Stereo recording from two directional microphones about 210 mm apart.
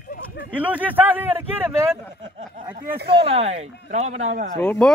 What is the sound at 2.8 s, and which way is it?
Speech, 45° right (ahead or behind).